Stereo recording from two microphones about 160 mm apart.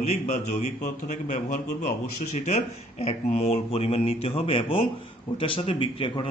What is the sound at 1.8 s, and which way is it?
Speech, 50° left (ahead or behind).